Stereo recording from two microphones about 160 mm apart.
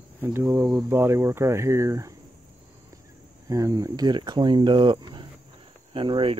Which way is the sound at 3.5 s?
20° right (ahead or behind).